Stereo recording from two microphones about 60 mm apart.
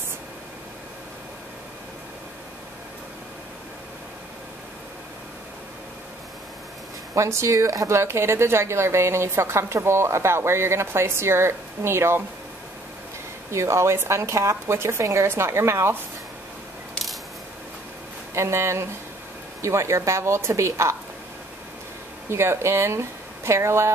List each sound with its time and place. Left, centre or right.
7.2 s a woman's voice: right
13.5 s a woman's voice: right
18.3 s a woman's voice: right
22.3 s a woman's voice: right